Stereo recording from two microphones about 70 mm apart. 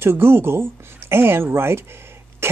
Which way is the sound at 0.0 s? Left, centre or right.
Right.